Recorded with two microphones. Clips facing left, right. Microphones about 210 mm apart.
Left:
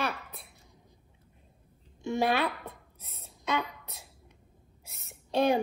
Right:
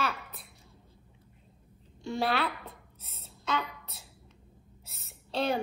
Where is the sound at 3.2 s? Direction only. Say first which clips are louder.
Left 1 dB; 15° left (ahead or behind).